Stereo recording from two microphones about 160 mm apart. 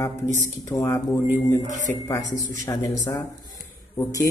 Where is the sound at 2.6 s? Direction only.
20° left (ahead or behind).